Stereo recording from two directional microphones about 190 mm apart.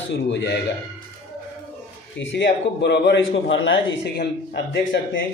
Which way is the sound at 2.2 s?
65° left (ahead or behind).